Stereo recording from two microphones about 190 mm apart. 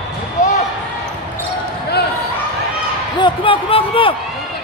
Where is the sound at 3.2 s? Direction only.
30° left (ahead or behind).